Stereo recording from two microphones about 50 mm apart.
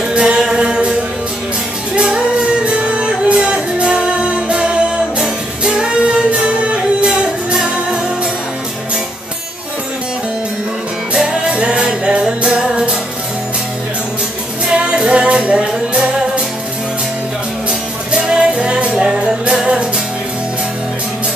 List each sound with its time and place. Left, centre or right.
0.1 s music: centre
2.0 s music: right
11.2 s music: right
14.7 s music: centre
18.1 s music: centre